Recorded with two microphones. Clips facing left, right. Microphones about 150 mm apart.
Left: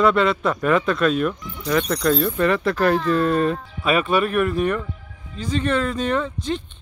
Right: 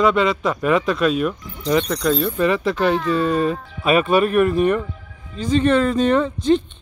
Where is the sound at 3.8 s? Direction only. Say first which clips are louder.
Right 4 dB; 20° right (ahead or behind).